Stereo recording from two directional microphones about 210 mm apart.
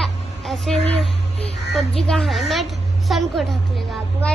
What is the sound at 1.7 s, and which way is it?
Child singing, centre (ahead or behind).